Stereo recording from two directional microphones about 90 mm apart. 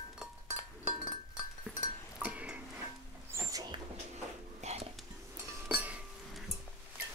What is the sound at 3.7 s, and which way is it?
Dog, 65° right (ahead or behind).